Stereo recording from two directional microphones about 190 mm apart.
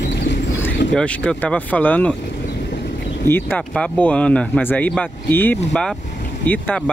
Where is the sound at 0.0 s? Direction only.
65° left (ahead or behind).